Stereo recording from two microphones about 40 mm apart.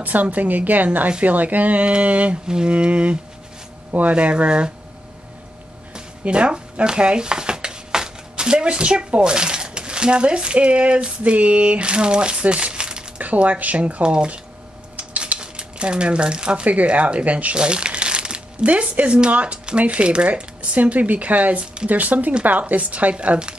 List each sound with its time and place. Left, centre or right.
0.0 s a woman's voice: right
1.9 s speech: right
2.4 s speech: right
6.2 s speech: right
13.2 s speech: right
15.0 s cutlery: right
15.3 s stir: right
16.6 s speech: right
17.6 s crumpling: right
18.7 s speech: right
20.7 s a woman's voice: right